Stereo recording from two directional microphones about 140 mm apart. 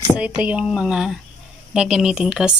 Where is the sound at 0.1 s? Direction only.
10° right (ahead or behind).